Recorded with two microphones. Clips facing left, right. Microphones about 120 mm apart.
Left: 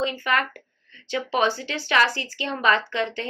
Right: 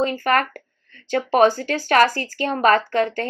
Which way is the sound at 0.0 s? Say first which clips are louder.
Right 5 dB; 45° right (ahead or behind).